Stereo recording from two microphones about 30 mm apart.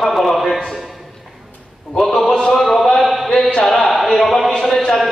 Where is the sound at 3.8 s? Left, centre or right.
Centre.